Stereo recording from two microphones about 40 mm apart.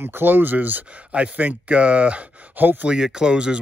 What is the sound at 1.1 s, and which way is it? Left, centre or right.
Speech, right.